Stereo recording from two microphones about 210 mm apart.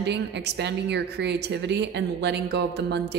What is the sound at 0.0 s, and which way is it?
A woman's voice, 55° right (ahead or behind).